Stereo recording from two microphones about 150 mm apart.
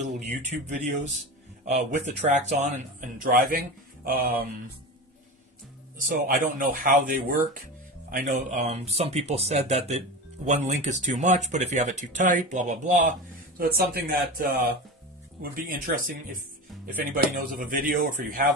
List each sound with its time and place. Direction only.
0.0 s speech: 55° right (ahead or behind); by 4.5 s 75° right (ahead or behind)
5.9 s speech: 65° right (ahead or behind)
13.6 s speech: 90° right
15.5 s speech: 70° right (ahead or behind)